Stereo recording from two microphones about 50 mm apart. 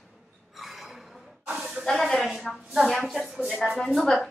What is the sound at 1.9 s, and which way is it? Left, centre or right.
A woman's voice, centre.